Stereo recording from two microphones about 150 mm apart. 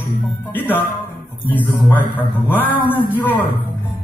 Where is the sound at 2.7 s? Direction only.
35° left (ahead or behind).